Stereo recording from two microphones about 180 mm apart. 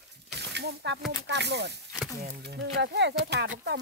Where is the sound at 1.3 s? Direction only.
70° right (ahead or behind).